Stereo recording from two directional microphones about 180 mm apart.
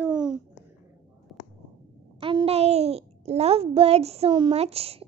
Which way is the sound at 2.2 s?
30° right (ahead or behind).